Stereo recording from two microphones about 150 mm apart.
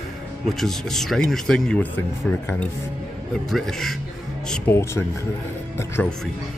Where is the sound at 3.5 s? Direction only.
Centre (ahead or behind).